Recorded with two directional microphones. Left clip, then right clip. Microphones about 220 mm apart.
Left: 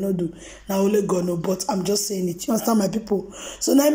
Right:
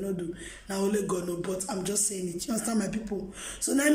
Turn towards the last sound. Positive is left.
turn(degrees=15)  # may be behind; listen again after turning